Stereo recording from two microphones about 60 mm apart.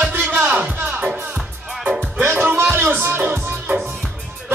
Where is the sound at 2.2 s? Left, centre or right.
Right.